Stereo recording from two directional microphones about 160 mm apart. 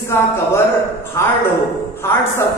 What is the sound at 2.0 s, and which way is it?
Speech, 15° left (ahead or behind).